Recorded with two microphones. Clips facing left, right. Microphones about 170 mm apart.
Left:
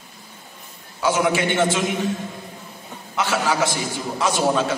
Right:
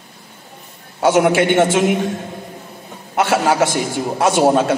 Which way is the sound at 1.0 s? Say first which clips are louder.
Right 7 dB; 65° right (ahead or behind).